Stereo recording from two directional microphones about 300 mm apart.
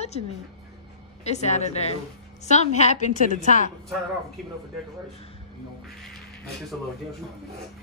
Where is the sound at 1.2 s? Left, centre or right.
Left.